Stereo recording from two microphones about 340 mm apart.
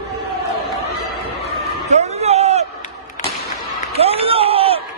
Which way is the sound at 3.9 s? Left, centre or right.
Centre.